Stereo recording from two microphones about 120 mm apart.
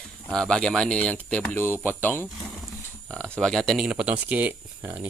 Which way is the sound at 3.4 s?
5° left (ahead or behind).